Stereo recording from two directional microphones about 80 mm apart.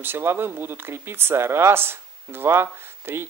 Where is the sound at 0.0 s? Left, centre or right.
Right.